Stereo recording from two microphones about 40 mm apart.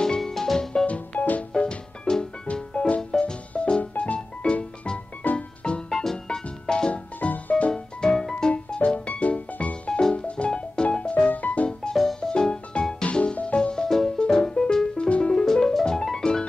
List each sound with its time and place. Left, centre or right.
0.0 s music: centre
0.8 s music: left
1.5 s music: left
5.2 s music: left
5.9 s music: centre
6.9 s music: left
7.7 s music: centre; by 11.7 s left
11.9 s music: centre
12.2 s music: centre
13.8 s music: centre; by 15.4 s left
15.4 s music: centre